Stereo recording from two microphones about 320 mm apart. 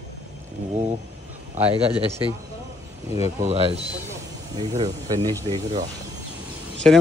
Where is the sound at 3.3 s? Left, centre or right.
Centre.